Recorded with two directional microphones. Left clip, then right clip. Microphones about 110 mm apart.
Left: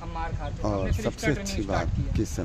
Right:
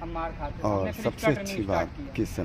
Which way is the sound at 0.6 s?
25° left (ahead or behind).